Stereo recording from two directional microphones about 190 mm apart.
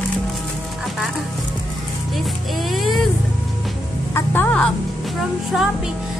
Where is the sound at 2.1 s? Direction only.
Centre (ahead or behind).